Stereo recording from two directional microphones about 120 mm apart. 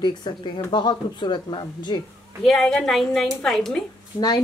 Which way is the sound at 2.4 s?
5° left (ahead or behind).